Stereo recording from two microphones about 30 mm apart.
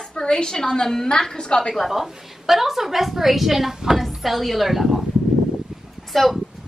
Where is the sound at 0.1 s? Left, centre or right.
Left.